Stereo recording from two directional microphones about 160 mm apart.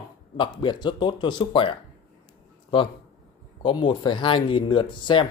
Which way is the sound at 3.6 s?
30° left (ahead or behind).